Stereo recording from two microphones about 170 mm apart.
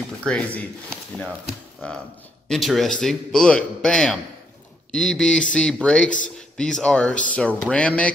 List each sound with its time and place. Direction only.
0.2 s speech: 5° left (ahead or behind)
2.4 s a man's voice: centre (ahead or behind)
6.0 s a man's voice: 50° left (ahead or behind)
6.5 s a man's voice: 5° left (ahead or behind)